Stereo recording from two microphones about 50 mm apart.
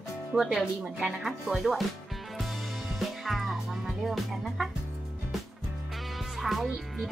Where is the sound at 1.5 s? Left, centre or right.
Centre.